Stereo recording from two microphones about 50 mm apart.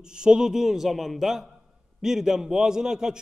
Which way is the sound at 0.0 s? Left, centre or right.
Centre.